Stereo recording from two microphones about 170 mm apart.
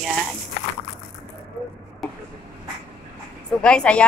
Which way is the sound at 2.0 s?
Centre (ahead or behind).